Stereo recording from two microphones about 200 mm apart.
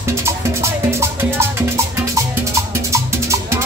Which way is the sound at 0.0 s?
15° right (ahead or behind).